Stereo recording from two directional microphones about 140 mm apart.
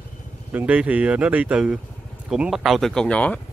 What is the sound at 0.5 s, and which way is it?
Speech, 10° right (ahead or behind).